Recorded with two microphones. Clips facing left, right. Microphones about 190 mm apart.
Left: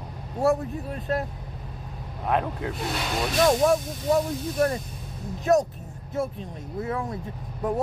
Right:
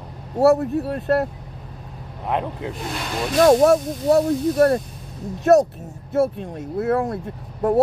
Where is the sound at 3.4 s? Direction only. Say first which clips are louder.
Right 7 dB; 50° right (ahead or behind).